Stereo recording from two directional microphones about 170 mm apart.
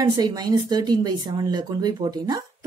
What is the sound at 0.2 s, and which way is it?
Speech, 25° right (ahead or behind).